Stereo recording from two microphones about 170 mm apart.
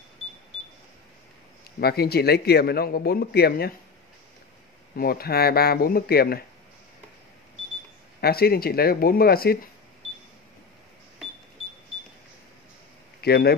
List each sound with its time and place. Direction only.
1.8 s speech: 65° left (ahead or behind)
4.9 s speech: 60° left (ahead or behind)
8.2 s speech: 65° left (ahead or behind)
13.2 s speech: 70° left (ahead or behind)